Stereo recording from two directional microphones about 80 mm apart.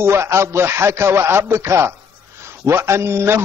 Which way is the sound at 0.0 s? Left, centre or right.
Right.